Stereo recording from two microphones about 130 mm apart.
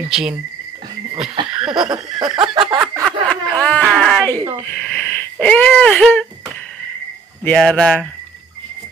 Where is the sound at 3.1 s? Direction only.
10° left (ahead or behind).